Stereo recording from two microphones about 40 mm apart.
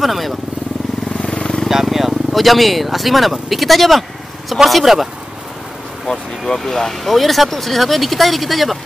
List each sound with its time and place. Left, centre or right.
0.0 s speech: centre
1.2 s vehicle: left
1.7 s speech: centre
6.0 s speech: centre